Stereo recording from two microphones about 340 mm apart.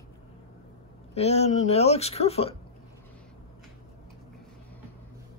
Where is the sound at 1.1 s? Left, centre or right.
Centre.